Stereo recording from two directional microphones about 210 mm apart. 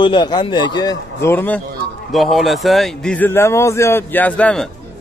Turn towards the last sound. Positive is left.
turn(degrees=5)  # may be behind; listen again after turning